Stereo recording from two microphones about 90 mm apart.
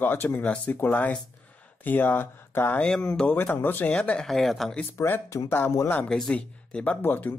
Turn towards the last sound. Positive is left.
turn(degrees=20)  # may be behind; listen again after turning